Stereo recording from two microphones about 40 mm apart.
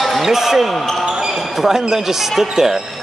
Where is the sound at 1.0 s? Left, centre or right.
Centre.